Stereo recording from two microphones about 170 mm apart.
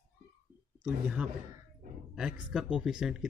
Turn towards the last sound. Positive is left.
turn(degrees=-5)  # may be behind; listen again after turning